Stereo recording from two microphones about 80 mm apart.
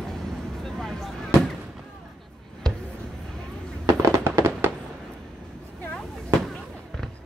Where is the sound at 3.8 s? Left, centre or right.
Right.